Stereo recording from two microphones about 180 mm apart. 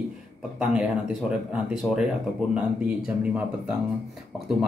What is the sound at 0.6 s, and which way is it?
Speech, 5° right (ahead or behind).